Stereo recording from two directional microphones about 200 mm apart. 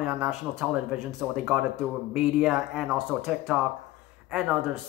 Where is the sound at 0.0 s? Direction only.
5° right (ahead or behind).